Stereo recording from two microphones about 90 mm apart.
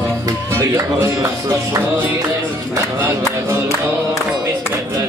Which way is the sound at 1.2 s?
50° right (ahead or behind).